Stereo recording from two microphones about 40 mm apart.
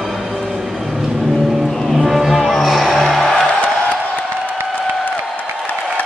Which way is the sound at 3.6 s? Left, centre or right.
Left.